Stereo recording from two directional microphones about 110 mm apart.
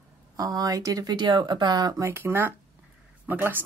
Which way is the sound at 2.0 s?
20° right (ahead or behind).